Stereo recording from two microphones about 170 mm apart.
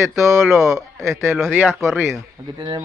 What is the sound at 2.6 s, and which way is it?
Speech, 25° right (ahead or behind).